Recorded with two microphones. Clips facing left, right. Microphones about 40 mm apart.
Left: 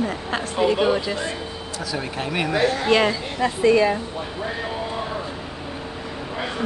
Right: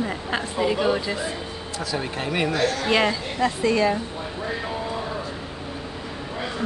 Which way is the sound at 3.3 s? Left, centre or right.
Centre.